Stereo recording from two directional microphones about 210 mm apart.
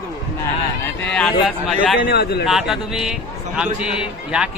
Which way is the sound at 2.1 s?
50° left (ahead or behind).